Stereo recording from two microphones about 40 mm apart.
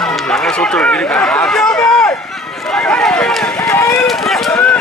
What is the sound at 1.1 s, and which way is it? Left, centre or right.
Speech, centre.